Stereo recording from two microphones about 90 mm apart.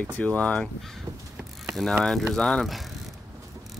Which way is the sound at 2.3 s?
5° left (ahead or behind).